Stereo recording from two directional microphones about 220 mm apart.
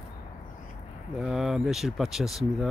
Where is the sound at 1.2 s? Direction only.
Centre (ahead or behind).